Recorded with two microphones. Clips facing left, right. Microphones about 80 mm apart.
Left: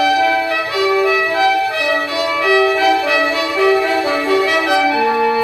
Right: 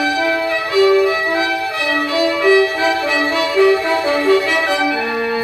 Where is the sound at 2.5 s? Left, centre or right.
Left.